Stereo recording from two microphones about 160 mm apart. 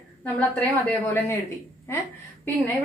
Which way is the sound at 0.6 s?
10° left (ahead or behind).